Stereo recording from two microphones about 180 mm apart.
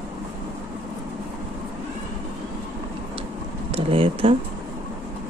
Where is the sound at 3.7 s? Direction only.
30° right (ahead or behind).